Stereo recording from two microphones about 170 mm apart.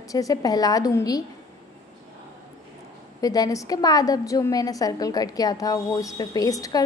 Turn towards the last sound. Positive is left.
turn(degrees=20)  # may be behind; listen again after turning